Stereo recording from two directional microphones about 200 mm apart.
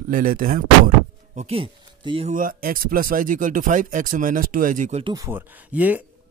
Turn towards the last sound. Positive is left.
turn(degrees=-10)  # may be behind; listen again after turning